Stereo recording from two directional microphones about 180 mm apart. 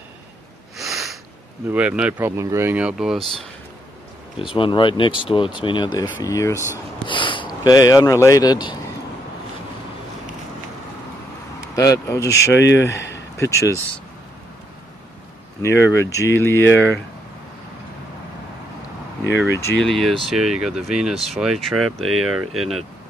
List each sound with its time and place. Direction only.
0.7 s sniff: centre (ahead or behind)
1.7 s speech: 5° right (ahead or behind)
4.6 s speech: 25° left (ahead or behind)
7.1 s speech: 30° left (ahead or behind)
11.7 s speech: 15° left (ahead or behind)
15.6 s speech: 15° left (ahead or behind)
19.3 s speech: 15° left (ahead or behind)
19.8 s speech: centre (ahead or behind)